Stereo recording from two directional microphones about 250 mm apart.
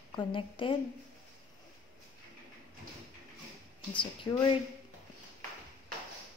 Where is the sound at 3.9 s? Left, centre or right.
Centre.